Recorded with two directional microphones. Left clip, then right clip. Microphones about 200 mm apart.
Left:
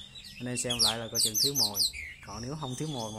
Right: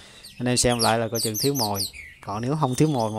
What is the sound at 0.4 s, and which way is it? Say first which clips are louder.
Speech: right 8 dB; 40° right (ahead or behind).